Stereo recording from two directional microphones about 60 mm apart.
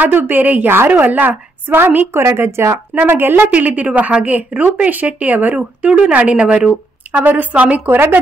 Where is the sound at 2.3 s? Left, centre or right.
Right.